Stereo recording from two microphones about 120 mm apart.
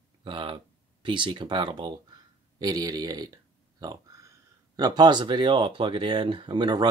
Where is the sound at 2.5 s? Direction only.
30° right (ahead or behind).